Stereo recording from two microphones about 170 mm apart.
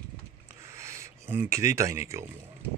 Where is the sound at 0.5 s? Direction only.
15° right (ahead or behind).